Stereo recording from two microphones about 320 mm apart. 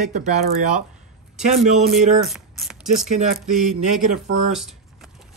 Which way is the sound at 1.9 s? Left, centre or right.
Centre.